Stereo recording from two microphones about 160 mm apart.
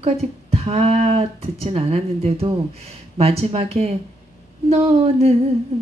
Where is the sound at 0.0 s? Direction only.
40° right (ahead or behind).